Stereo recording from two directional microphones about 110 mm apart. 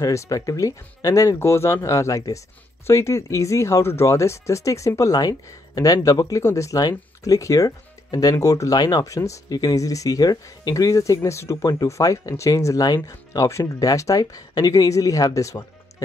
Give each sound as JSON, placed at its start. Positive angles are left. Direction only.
{"t": 0.0, "sound": "speech", "side_deg": 30}